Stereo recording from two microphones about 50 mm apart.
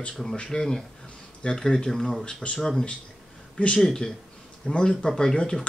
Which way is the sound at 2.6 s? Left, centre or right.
Centre.